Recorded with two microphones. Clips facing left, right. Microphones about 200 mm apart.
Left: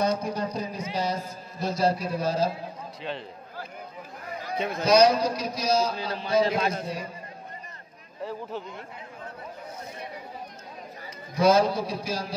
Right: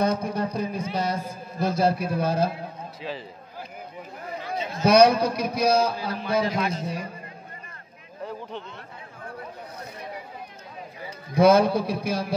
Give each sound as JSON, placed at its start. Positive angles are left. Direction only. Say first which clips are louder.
{"t": 0.0, "sound": "a sound", "louder": "right 2 dB", "side_deg": -55}
{"t": 3.0, "sound": "a man's voice", "louder": "even", "side_deg": 0}
{"t": 4.6, "sound": "a man's voice", "louder": "left 5 dB", "side_deg": 60}
{"t": 4.8, "sound": "a man's voice", "louder": "right 3 dB", "side_deg": -60}
{"t": 8.2, "sound": "speech", "louder": "left 1 dB", "side_deg": 5}
{"t": 11.3, "sound": "a man's voice", "louder": "right 3 dB", "side_deg": -55}